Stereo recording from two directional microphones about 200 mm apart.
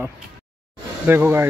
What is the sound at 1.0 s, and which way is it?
Speech, 10° right (ahead or behind).